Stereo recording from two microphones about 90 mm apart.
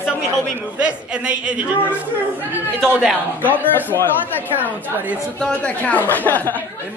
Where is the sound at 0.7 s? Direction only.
10° right (ahead or behind).